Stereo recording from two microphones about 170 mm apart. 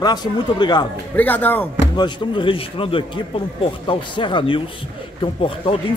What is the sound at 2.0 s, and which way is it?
Speech, 30° left (ahead or behind).